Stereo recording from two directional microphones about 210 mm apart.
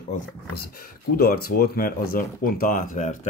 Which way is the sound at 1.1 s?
45° left (ahead or behind).